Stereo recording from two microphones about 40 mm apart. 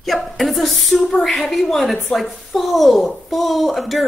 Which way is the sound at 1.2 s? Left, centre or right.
Centre.